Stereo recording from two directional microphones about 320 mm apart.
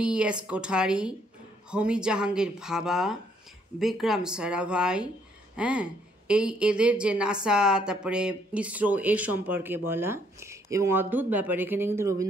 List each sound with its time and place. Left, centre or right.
0.0 s a woman's voice: centre